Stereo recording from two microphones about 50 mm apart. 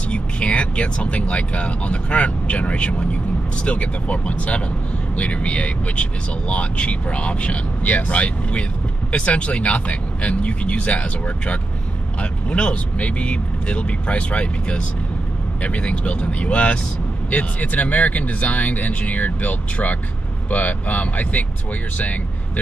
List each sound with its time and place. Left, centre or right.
0.1 s speech: left